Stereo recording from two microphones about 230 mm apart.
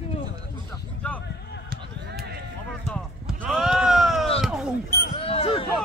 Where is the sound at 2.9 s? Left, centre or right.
Centre.